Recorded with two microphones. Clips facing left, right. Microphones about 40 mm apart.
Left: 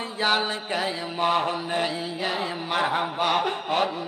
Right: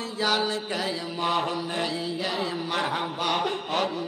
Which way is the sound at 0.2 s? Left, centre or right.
Left.